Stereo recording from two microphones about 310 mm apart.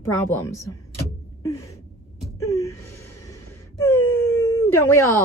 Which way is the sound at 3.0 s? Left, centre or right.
Centre.